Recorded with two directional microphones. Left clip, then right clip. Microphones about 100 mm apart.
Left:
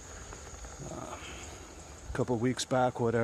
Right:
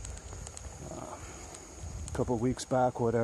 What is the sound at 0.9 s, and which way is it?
Dog, 25° left (ahead or behind).